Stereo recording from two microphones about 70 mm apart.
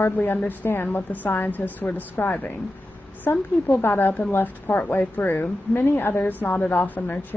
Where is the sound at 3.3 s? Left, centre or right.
Left.